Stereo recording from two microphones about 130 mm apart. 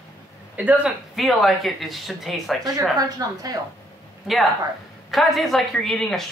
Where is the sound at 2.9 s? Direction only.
30° right (ahead or behind).